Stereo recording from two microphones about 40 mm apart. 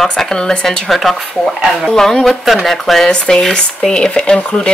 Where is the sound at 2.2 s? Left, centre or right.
Centre.